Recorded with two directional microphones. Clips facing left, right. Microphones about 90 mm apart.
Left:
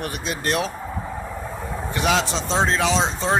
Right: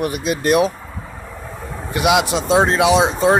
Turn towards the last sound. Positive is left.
turn(degrees=-15)  # may be behind; listen again after turning